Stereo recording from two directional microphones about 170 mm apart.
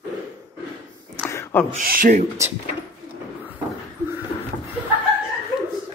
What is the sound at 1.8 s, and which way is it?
Speech, 55° right (ahead or behind).